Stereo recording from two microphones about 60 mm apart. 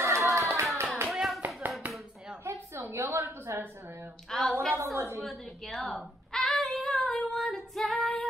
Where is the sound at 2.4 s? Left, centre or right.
Right.